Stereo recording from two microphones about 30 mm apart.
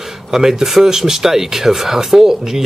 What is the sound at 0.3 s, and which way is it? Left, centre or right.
Speech, centre.